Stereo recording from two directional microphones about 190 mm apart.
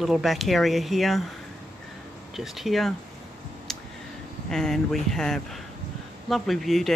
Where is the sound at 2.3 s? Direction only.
Centre (ahead or behind).